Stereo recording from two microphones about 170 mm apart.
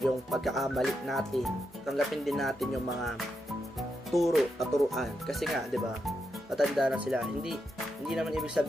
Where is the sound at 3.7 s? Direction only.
Centre (ahead or behind).